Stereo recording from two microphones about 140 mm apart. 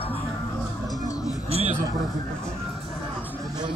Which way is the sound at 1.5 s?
45° right (ahead or behind).